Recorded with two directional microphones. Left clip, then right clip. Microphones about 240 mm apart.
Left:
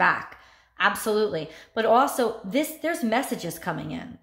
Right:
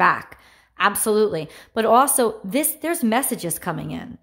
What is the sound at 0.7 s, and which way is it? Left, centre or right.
Speech, right.